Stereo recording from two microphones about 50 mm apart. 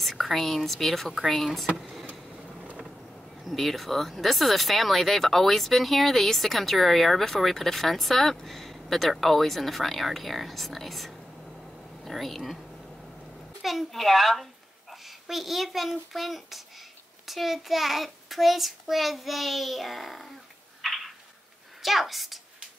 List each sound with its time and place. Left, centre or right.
0.0 s speech: centre
2.4 s vehicle: right
3.4 s a woman's voice: centre
20.8 s a sound: centre
21.8 s speech: centre